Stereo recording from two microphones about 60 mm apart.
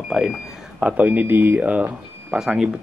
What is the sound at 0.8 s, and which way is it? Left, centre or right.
Speech, right.